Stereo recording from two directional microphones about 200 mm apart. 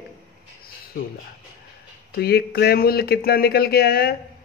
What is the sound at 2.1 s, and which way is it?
Speech, 50° left (ahead or behind).